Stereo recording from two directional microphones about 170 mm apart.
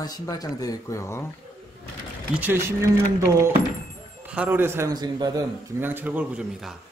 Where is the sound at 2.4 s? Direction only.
15° right (ahead or behind).